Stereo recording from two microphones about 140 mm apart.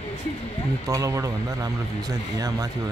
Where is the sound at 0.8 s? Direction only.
25° right (ahead or behind).